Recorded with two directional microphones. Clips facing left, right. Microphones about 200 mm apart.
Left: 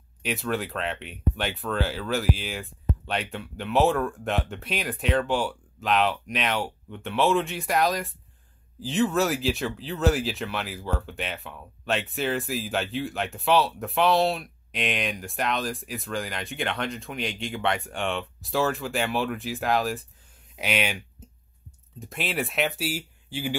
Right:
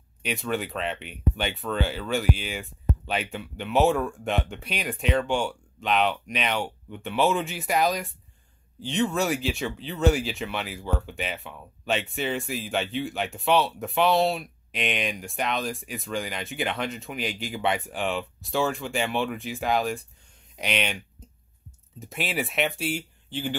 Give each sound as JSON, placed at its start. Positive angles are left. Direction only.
{"t": 0.2, "sound": "speech", "side_deg": 0}
{"t": 22.0, "sound": "speech", "side_deg": 0}